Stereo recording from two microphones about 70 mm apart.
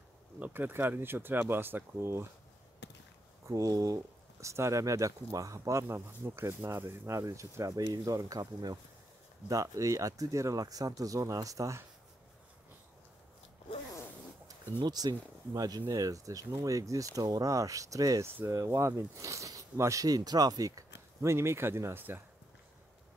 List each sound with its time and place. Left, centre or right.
0.4 s speech: right
3.4 s speech: right
7.2 s speech: right
9.5 s speech: right
14.9 s speech: right
15.9 s speech: right